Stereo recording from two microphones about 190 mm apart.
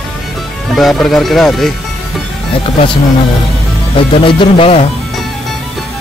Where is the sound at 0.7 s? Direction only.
Centre (ahead or behind).